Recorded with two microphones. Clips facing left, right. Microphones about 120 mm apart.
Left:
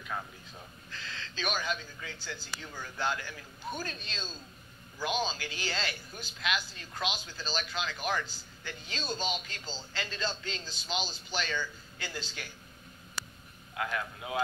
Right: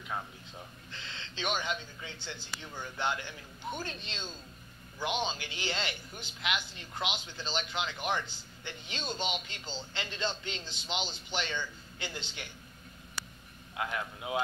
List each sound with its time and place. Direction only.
0.0 s speech: 20° right (ahead or behind)
13.7 s a man's voice: 20° right (ahead or behind)